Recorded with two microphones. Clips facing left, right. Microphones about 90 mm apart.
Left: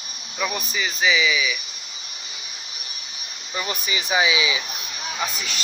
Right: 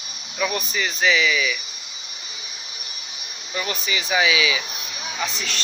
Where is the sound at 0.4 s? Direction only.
5° left (ahead or behind).